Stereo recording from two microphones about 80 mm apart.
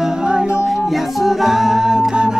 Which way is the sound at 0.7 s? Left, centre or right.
Centre.